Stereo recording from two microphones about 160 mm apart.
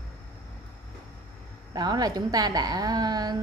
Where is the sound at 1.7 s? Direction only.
25° right (ahead or behind).